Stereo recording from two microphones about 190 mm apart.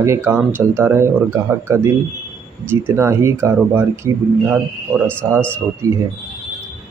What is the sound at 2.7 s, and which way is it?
Speech, 15° right (ahead or behind).